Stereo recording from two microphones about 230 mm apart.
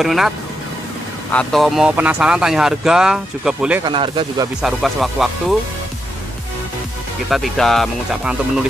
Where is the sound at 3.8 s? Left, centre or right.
Right.